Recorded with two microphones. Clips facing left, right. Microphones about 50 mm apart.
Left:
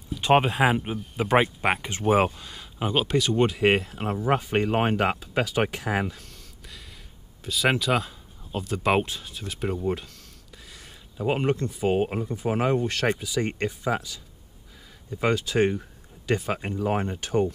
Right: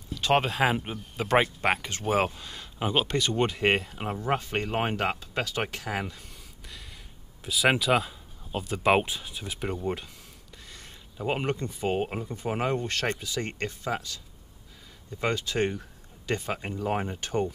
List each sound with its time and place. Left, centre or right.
0.1 s speech: centre
2.3 s speech: centre
7.4 s speech: centre
10.7 s a sound: centre
11.8 s speech: centre